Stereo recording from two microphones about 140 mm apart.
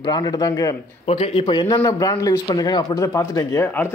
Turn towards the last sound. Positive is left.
turn(degrees=20)  # may be behind; listen again after turning